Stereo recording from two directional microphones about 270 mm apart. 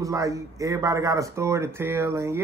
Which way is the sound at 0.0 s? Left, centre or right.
Centre.